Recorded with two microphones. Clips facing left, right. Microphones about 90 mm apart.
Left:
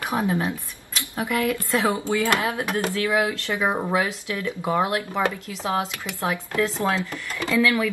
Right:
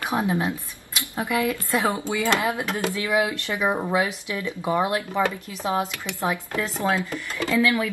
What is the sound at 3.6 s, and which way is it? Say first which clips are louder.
Speech: even; 20° left (ahead or behind).